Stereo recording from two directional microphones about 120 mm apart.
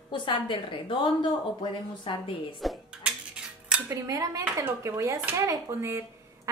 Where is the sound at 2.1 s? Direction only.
50° left (ahead or behind).